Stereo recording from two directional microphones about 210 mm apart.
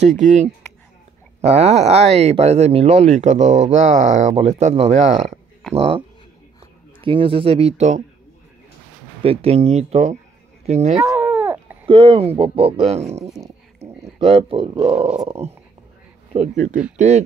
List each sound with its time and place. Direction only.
0.0 s speech: 35° right (ahead or behind)
9.2 s speech: 30° right (ahead or behind)
11.0 s a sound: 10° right (ahead or behind)
11.9 s speech: 25° right (ahead or behind)
16.3 s speech: 35° right (ahead or behind)